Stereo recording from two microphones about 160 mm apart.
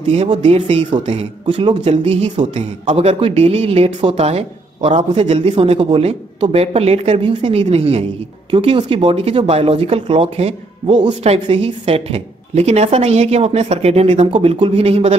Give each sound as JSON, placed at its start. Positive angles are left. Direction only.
{"t": 0.1, "sound": "speech", "side_deg": -35}